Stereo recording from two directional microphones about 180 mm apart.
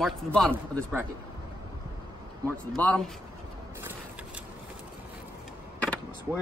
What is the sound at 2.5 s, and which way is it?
Speech, 5° left (ahead or behind).